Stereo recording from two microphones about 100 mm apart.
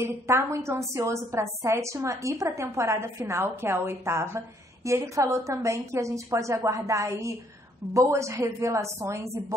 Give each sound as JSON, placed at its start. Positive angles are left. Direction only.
{"t": 0.0, "sound": "a woman's voice", "side_deg": -25}